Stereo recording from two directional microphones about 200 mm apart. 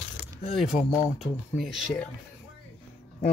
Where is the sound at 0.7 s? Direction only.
5° right (ahead or behind).